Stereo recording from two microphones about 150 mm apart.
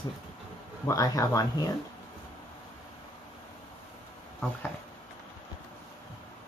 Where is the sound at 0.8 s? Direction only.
25° left (ahead or behind).